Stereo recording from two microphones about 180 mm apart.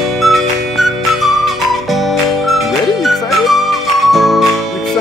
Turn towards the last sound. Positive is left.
turn(degrees=0)  # may be behind; listen again after turning